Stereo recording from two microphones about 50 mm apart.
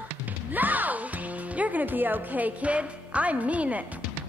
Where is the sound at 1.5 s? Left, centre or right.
Right.